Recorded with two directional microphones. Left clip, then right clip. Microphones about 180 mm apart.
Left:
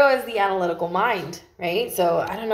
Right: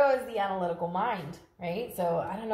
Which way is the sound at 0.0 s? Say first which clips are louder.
Left 7 dB; 30° left (ahead or behind).